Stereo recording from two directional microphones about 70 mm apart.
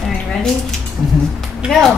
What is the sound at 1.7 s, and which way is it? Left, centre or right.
Speech, centre.